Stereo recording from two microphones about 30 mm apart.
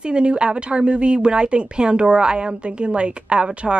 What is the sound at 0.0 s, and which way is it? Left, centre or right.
A woman's voice, right.